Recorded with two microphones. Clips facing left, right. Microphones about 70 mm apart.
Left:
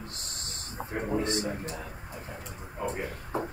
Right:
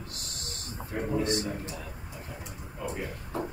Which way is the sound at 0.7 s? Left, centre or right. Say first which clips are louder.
Even; centre.